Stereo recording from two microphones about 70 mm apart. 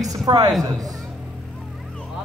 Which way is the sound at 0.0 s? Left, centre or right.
Right.